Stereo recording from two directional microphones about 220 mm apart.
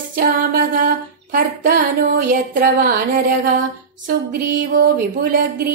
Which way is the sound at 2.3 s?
45° right (ahead or behind).